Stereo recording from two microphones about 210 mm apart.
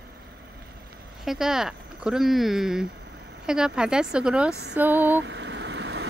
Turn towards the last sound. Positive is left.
turn(degrees=-55)  # may be behind; listen again after turning